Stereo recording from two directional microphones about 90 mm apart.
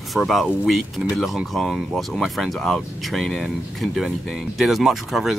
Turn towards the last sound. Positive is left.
turn(degrees=-5)  # may be behind; listen again after turning